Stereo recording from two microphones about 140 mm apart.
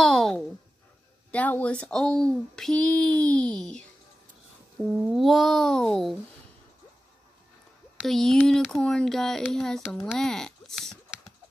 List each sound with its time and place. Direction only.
0.0 s a sound: 5° left (ahead or behind)
1.3 s speech: 10° left (ahead or behind)
5.0 s a child's voice: centre (ahead or behind)
8.0 s a child's voice: centre (ahead or behind)